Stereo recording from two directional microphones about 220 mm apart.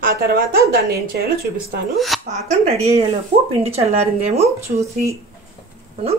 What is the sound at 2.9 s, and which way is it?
Speech, 30° right (ahead or behind).